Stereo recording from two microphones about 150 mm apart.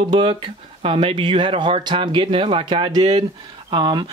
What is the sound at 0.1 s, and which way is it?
Speech, 35° right (ahead or behind).